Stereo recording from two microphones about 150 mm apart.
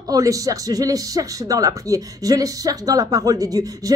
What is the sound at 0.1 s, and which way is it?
Speech, 25° right (ahead or behind).